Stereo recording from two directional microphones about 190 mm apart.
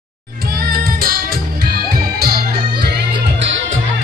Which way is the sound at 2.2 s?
55° right (ahead or behind).